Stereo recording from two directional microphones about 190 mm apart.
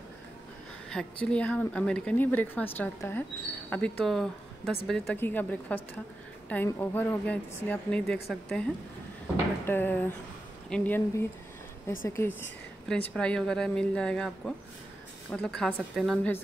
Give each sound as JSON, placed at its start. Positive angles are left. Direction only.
{"t": 0.8, "sound": "a woman's voice", "side_deg": 5}
{"t": 9.7, "sound": "a woman's voice", "side_deg": 10}